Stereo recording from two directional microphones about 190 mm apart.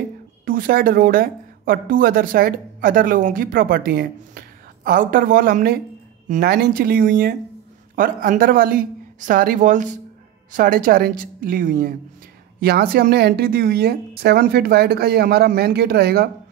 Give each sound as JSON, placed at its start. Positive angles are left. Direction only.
{"t": 0.5, "sound": "a woman's voice", "side_deg": -50}
{"t": 6.5, "sound": "a woman's voice", "side_deg": -55}